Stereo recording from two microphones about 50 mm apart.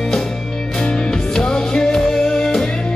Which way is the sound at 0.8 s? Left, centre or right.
Centre.